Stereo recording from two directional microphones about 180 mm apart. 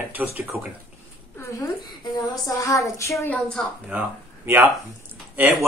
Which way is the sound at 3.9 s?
10° right (ahead or behind).